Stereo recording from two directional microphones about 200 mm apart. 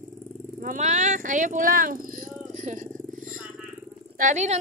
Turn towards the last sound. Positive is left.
turn(degrees=-35)  # may be behind; listen again after turning